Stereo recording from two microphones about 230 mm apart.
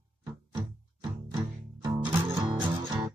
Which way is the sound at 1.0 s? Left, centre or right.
Centre.